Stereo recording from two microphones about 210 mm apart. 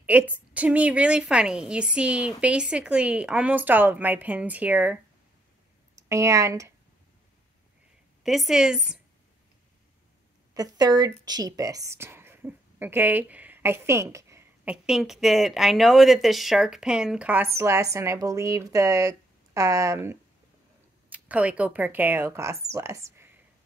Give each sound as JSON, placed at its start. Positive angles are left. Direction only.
{"t": 0.0, "sound": "a woman's voice", "side_deg": -5}
{"t": 5.9, "sound": "a woman's voice", "side_deg": -15}
{"t": 8.2, "sound": "a woman's voice", "side_deg": 0}
{"t": 10.5, "sound": "a woman's voice", "side_deg": -20}